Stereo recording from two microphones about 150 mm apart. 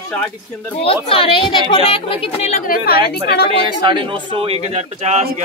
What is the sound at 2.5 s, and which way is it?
Speech, 70° left (ahead or behind).